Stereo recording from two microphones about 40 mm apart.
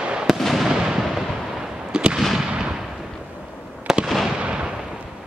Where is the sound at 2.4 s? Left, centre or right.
Centre.